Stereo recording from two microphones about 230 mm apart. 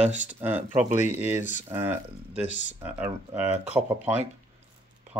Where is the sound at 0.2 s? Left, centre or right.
Centre.